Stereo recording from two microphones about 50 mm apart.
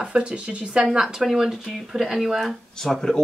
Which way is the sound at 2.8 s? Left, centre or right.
Centre.